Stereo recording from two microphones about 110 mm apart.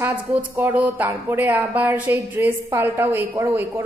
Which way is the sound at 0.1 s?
15° right (ahead or behind).